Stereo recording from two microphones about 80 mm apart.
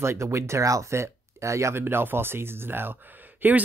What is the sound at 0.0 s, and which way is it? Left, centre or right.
Speech, right.